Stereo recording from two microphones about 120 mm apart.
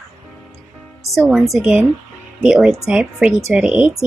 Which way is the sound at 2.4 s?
5° right (ahead or behind).